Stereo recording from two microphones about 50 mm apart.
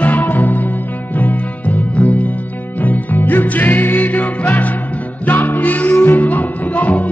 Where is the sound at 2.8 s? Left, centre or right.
Left.